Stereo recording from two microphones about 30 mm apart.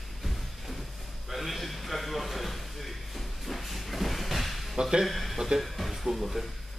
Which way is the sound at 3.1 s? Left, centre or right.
Centre.